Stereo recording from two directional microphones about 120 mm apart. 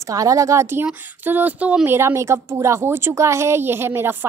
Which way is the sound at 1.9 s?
25° right (ahead or behind).